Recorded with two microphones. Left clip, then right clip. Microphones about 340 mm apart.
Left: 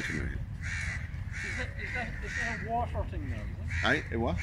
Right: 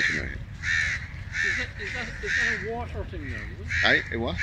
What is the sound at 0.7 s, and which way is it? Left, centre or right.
Speech, centre.